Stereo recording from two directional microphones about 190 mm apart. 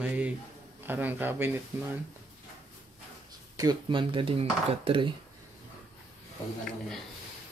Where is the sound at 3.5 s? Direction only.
20° right (ahead or behind).